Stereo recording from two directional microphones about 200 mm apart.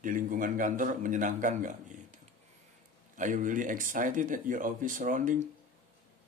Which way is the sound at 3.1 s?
40° right (ahead or behind).